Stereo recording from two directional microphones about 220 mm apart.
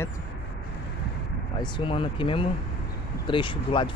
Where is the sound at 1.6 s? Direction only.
20° left (ahead or behind).